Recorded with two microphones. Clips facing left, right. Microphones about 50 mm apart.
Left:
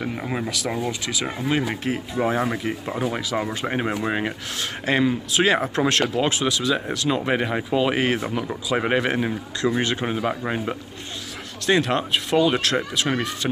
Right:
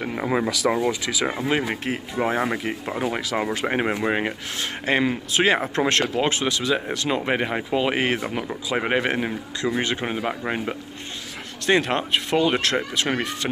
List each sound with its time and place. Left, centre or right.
0.1 s speech: right
1.7 s speech: right
5.0 s speech: right
5.5 s speech: right
7.2 s a man's voice: right
11.6 s speech: right